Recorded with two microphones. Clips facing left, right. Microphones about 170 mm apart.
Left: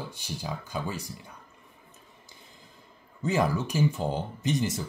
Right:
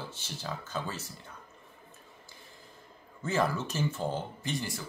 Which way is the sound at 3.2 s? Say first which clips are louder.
Left 3 dB; 15° left (ahead or behind).